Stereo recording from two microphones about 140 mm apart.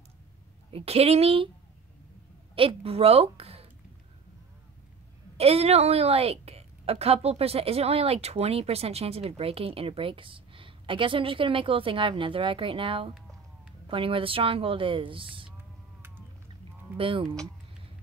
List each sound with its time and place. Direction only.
0.7 s a woman's voice: 45° right (ahead or behind)
2.5 s a woman's voice: 40° right (ahead or behind)
5.4 s a woman's voice: 45° right (ahead or behind)
16.9 s speech: 40° right (ahead or behind)